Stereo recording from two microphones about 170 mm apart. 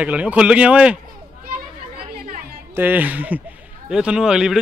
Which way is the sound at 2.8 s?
10° right (ahead or behind).